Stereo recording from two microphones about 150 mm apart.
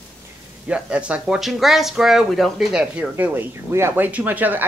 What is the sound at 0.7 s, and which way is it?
Speech, 5° right (ahead or behind).